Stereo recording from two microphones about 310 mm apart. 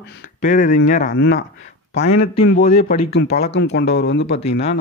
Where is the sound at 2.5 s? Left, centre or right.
Left.